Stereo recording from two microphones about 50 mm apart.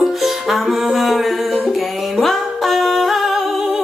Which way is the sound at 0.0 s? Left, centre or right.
Centre.